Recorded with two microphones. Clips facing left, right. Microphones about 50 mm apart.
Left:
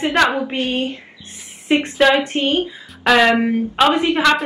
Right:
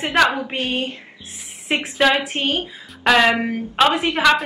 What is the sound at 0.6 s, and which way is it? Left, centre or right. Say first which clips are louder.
Speech: left 2 dB; right.